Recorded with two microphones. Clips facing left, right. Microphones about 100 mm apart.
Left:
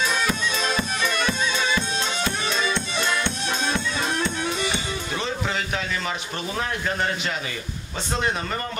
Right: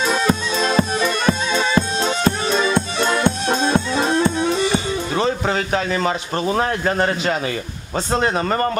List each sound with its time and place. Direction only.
0.0 s music: 35° right (ahead or behind)
8.1 s speech: 45° right (ahead or behind)